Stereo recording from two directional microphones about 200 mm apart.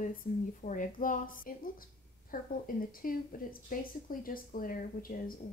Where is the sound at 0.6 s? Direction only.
40° left (ahead or behind).